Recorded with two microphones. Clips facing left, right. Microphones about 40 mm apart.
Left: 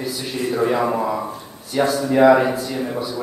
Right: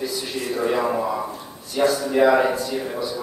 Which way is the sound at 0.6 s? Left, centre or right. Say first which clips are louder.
Left 2 dB; centre.